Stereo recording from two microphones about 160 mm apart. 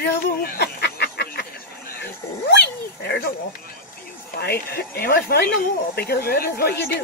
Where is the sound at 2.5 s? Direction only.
90° left.